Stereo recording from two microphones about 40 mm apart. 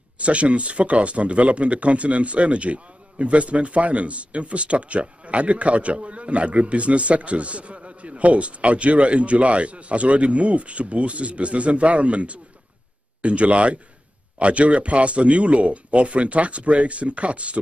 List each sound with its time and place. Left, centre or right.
0.2 s speech: right